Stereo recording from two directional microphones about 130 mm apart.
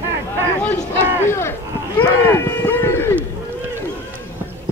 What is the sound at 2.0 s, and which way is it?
Cattle, 15° left (ahead or behind).